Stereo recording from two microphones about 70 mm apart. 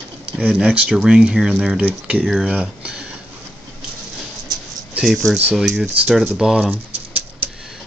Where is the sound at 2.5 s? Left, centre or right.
Centre.